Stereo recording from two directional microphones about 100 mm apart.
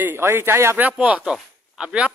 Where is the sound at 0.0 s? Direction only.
25° right (ahead or behind).